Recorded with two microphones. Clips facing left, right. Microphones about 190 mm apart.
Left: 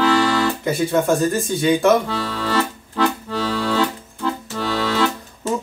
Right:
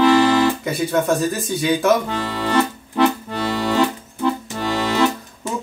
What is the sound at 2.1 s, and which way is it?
Accordion, 15° right (ahead or behind).